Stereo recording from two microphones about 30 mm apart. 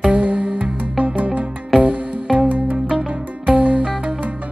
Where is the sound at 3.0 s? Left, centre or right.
Right.